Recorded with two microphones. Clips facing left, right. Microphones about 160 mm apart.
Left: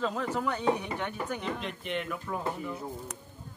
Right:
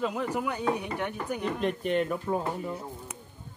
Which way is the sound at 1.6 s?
45° right (ahead or behind).